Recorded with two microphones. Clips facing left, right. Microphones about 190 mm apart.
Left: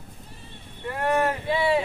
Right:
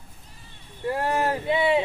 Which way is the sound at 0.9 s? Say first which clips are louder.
Left 1 dB; 30° right (ahead or behind).